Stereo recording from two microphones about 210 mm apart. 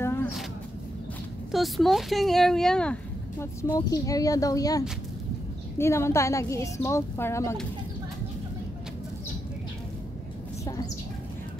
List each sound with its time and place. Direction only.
0.0 s a sound: 10° left (ahead or behind)
1.5 s speech: centre (ahead or behind)
3.6 s speech: 15° left (ahead or behind)